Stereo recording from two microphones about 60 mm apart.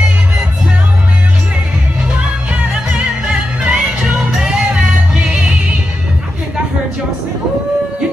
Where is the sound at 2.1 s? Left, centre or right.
Centre.